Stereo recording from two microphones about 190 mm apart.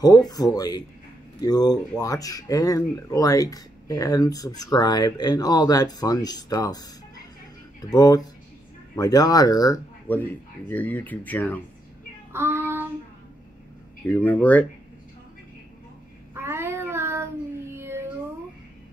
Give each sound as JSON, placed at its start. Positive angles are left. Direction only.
{"t": 0.0, "sound": "speech", "side_deg": 20}
{"t": 7.9, "sound": "speech", "side_deg": 20}
{"t": 12.3, "sound": "child singing", "side_deg": -10}
{"t": 14.1, "sound": "speech", "side_deg": 10}
{"t": 16.3, "sound": "child singing", "side_deg": -10}